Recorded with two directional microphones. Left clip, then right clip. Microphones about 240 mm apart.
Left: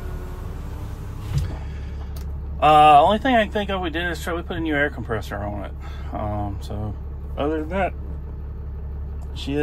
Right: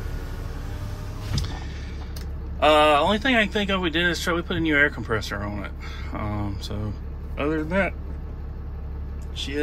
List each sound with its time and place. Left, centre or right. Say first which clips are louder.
2.6 s speech: left 5 dB; centre